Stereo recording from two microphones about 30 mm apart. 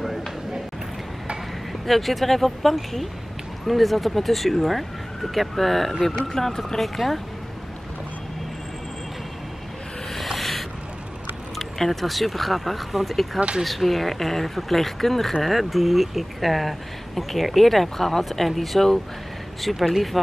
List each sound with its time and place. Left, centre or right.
1.7 s speech: centre
6.2 s speech: centre
6.8 s speech: centre
10.1 s a sound: centre
11.5 s speech: centre